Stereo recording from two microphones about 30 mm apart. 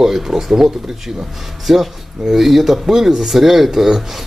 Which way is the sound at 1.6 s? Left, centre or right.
Centre.